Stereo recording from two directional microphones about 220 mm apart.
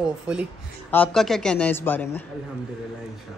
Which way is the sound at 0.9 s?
5° left (ahead or behind).